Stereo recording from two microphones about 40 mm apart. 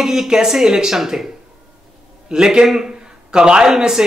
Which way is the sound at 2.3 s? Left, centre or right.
Centre.